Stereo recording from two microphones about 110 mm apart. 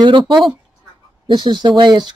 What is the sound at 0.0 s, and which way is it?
Speech, 45° right (ahead or behind).